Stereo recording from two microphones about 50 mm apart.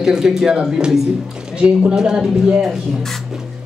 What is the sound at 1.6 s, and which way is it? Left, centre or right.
Speech, right.